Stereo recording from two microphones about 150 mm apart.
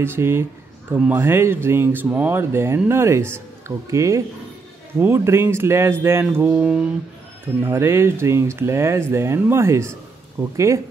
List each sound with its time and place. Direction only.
0.0 s speech: 15° right (ahead or behind)